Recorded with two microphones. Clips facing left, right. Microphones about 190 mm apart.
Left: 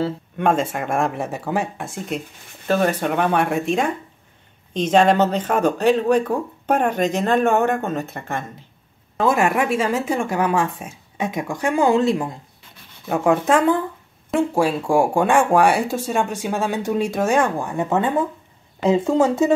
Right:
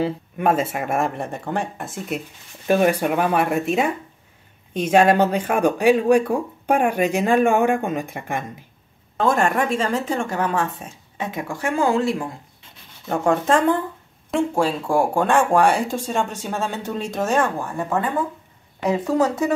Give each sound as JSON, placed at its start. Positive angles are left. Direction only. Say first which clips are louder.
{"t": 0.0, "sound": "speech", "louder": "even", "side_deg": -5}
{"t": 9.1, "sound": "speech", "louder": "left 1 dB", "side_deg": 5}
{"t": 13.0, "sound": "speech", "louder": "left 2 dB", "side_deg": 5}